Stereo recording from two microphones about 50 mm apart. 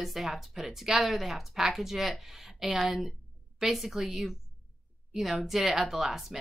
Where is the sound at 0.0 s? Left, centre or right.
Centre.